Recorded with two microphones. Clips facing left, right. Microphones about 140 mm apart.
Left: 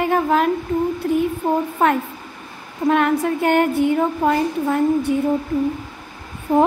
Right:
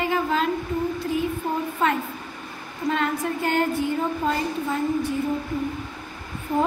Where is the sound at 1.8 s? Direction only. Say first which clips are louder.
Left 5 dB; 60° left (ahead or behind).